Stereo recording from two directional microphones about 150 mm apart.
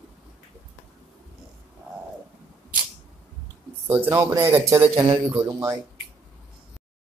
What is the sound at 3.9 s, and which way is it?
Speech, 20° right (ahead or behind).